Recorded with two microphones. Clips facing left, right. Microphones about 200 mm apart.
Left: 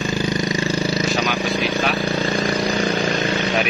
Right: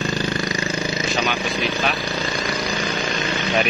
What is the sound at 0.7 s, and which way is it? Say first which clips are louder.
Vehicle: left 4 dB; 35° left (ahead or behind).